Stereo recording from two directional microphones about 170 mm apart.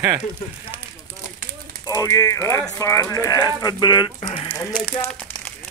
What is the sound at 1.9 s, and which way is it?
Speech, 20° left (ahead or behind).